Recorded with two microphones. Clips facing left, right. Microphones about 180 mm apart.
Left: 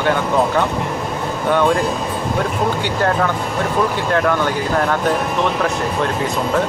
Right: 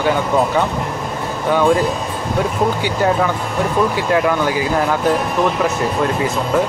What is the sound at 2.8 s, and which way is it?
Speech, 5° right (ahead or behind).